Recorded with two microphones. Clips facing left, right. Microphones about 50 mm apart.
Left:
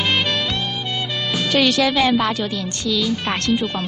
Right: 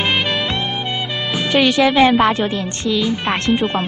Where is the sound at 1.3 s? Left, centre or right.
Centre.